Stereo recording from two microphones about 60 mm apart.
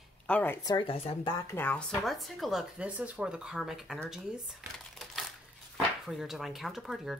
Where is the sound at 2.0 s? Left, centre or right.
Centre.